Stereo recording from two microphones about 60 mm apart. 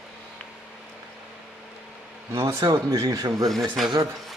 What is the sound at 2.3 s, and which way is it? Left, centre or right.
Speech, right.